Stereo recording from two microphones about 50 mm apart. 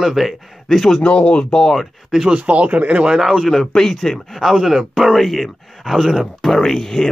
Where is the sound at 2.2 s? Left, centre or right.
Right.